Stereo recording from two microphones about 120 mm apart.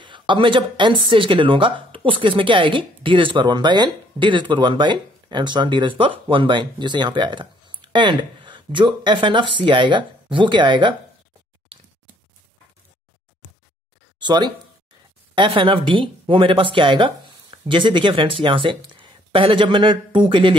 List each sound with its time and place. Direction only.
0.0 s a woman's voice: 40° right (ahead or behind)
14.2 s a woman's voice: 40° right (ahead or behind)